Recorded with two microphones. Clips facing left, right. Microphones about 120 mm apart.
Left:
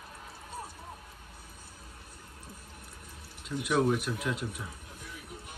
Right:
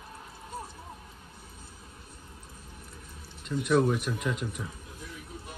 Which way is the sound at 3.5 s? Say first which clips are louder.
Right 3 dB; centre (ahead or behind).